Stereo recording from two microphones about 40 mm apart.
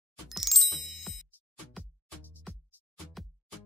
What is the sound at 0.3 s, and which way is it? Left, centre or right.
Music, centre.